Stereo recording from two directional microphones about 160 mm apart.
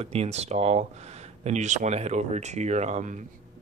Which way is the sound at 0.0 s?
40° right (ahead or behind).